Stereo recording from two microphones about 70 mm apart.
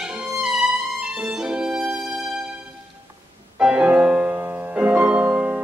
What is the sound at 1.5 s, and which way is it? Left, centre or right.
Music, centre.